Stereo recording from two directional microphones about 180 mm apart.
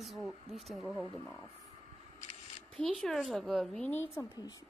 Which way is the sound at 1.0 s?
20° left (ahead or behind).